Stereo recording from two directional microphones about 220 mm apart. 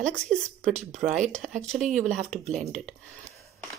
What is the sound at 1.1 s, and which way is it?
Speech, 35° right (ahead or behind).